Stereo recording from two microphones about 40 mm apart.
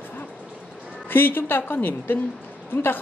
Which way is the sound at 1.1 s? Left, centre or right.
Left.